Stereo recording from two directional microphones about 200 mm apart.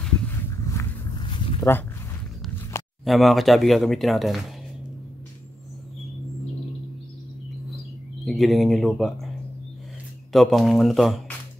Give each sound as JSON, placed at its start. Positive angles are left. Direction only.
{"t": 0.0, "sound": "a sound", "side_deg": 5}
{"t": 1.6, "sound": "speech", "side_deg": 10}
{"t": 3.1, "sound": "speech", "side_deg": 0}
{"t": 8.3, "sound": "speech", "side_deg": 0}
{"t": 10.3, "sound": "speech", "side_deg": 0}